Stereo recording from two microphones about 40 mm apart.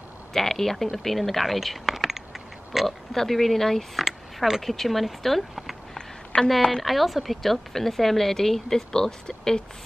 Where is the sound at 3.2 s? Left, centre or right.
Centre.